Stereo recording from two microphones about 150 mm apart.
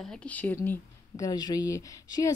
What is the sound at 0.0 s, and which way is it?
A woman's voice, 5° left (ahead or behind).